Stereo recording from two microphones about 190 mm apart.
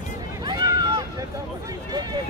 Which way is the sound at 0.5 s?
20° right (ahead or behind).